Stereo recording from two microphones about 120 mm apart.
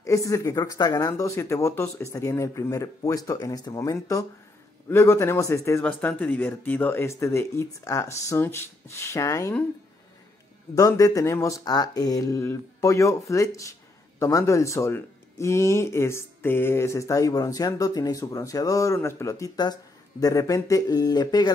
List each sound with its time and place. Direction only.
0.0 s speech: 25° left (ahead or behind)
10.8 s speech: 30° left (ahead or behind)